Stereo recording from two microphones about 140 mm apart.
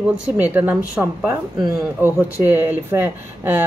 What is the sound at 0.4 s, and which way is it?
Speech, 15° right (ahead or behind).